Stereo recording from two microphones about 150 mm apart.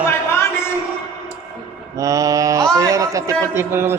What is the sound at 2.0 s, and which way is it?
Mantra, 20° right (ahead or behind).